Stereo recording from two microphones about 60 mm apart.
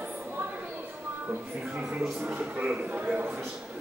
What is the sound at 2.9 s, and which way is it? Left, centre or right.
Speech, right.